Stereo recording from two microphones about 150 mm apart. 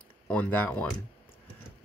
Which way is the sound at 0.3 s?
10° left (ahead or behind).